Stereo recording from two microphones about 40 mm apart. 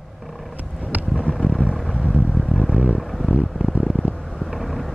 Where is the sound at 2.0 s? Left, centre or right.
Right.